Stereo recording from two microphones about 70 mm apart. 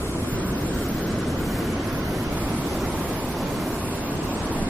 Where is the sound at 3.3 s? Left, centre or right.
Centre.